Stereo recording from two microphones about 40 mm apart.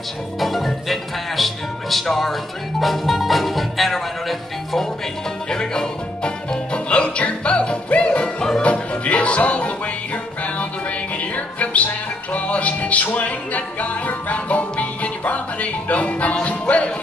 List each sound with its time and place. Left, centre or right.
0.4 s music: centre
5.5 s music: centre
8.4 s music: centre
8.6 s music: left
11.1 s music: left